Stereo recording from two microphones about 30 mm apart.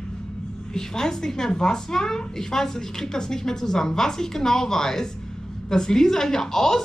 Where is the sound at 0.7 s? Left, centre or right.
Centre.